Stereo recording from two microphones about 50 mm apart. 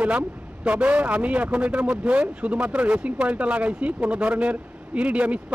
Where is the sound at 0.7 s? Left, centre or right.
Right.